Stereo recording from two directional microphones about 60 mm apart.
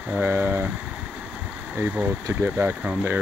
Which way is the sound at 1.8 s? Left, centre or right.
Right.